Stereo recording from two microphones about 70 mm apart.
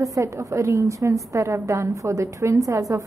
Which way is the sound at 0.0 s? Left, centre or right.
Right.